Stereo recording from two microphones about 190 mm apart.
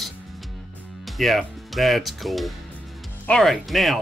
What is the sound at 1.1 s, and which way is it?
Speech, centre (ahead or behind).